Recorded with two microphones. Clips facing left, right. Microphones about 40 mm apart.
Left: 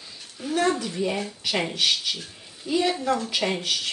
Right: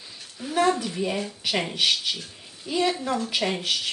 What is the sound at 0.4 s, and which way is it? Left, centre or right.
Speech, centre.